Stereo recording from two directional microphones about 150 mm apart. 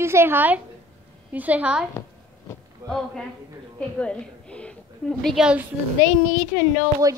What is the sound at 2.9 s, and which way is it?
A man's voice, 5° left (ahead or behind).